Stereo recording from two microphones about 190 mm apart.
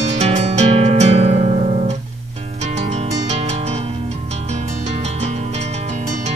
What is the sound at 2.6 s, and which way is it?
Music, 35° right (ahead or behind).